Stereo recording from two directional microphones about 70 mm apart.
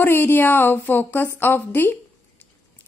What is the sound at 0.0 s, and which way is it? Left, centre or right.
A woman's voice, left.